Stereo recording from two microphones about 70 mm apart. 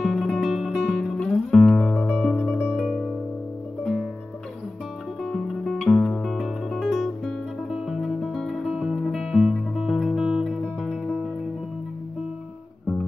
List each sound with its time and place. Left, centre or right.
0.0 s music: centre
0.7 s music: centre
2.0 s music: left
5.2 s music: centre
6.3 s guitar: centre
7.7 s music: centre
9.2 s music: centre
10.8 s music: centre